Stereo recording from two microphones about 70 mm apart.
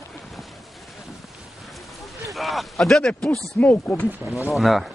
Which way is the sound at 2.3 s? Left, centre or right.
Centre.